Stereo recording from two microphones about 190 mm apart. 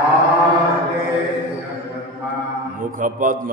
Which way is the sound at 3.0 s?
45° right (ahead or behind).